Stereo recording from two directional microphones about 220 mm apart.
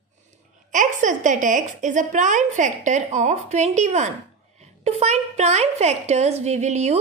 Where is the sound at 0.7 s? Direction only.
35° right (ahead or behind).